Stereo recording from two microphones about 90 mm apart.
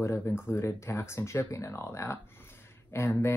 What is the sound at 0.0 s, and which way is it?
Speech, 30° left (ahead or behind).